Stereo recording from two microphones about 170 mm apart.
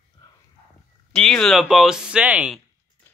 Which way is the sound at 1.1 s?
5° left (ahead or behind).